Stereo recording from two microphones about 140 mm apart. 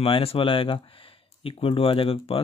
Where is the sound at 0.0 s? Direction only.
45° left (ahead or behind).